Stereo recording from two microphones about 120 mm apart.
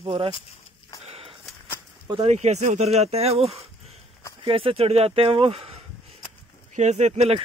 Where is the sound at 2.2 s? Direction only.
70° right (ahead or behind); by 5.8 s 55° right (ahead or behind).